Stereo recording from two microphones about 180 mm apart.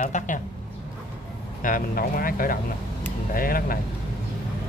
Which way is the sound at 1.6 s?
50° left (ahead or behind).